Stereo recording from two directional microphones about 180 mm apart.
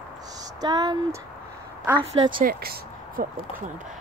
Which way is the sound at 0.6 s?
20° right (ahead or behind).